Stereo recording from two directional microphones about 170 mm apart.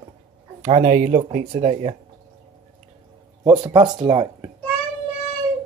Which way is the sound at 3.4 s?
25° right (ahead or behind).